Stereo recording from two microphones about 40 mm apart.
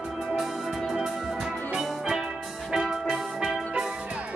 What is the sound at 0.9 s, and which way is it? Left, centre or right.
Music, centre.